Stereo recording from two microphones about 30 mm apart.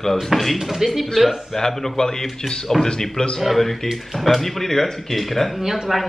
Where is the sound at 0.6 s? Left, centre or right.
Centre.